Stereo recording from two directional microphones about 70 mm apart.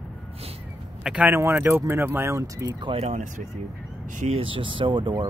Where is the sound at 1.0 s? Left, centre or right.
Centre.